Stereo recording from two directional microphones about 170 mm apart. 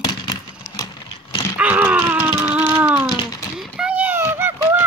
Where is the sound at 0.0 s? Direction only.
25° left (ahead or behind).